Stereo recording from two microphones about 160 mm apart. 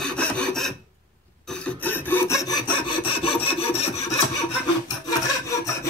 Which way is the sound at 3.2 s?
35° left (ahead or behind).